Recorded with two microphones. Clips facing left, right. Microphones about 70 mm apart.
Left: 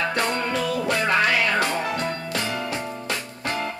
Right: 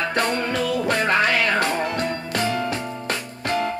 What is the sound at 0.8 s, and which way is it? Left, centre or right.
Music, right.